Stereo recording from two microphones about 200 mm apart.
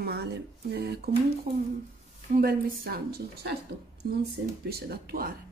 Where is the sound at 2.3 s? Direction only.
45° right (ahead or behind).